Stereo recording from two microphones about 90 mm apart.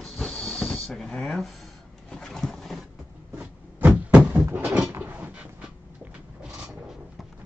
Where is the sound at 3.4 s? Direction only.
20° right (ahead or behind).